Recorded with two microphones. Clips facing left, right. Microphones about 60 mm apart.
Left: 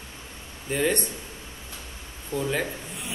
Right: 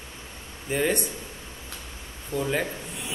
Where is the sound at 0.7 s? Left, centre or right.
Centre.